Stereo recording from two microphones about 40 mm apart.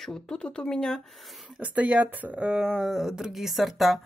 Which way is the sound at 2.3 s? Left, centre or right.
Right.